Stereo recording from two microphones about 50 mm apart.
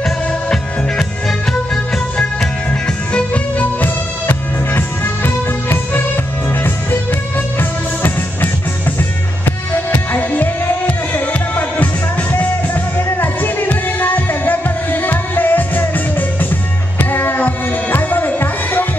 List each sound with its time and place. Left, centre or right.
0.0 s music: centre
3.1 s music: left
3.8 s music: left